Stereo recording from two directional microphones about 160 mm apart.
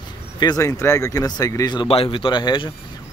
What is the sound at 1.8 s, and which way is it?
Speech, 35° left (ahead or behind).